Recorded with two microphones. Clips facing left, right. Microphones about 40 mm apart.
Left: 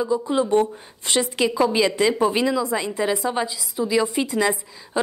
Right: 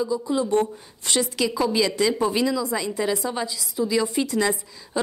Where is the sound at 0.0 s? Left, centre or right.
Left.